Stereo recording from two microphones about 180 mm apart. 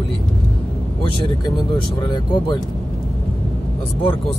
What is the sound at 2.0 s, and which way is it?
Speech, 25° left (ahead or behind).